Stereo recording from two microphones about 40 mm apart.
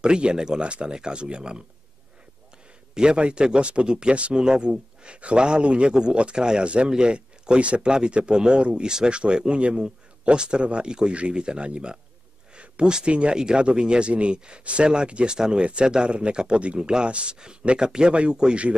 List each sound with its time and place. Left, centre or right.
0.0 s speech: right
2.9 s speech: right